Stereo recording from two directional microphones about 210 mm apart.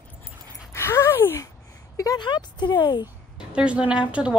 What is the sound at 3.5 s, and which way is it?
Speech, 5° right (ahead or behind).